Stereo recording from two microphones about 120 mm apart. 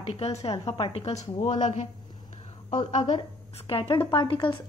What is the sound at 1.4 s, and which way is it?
A woman's voice, 70° left (ahead or behind).